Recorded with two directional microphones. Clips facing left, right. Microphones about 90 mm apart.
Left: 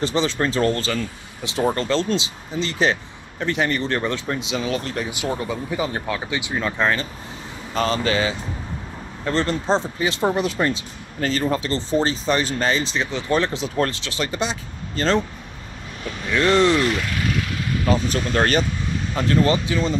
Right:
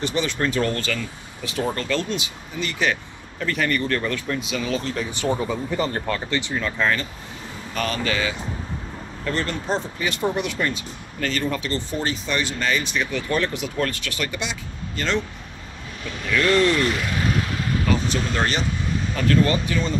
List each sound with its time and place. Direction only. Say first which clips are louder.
0.0 s speech: left 2 dB; 25° left (ahead or behind)
4.7 s speech: even; 65° left (ahead or behind)
5.3 s speech: right 3 dB; centre (ahead or behind); by 15.2 s 35° left (ahead or behind)
16.3 s speech: left 2 dB; 25° left (ahead or behind)
17.8 s speech: left 4 dB; 45° left (ahead or behind)
19.1 s speech: left 1 dB; 25° left (ahead or behind)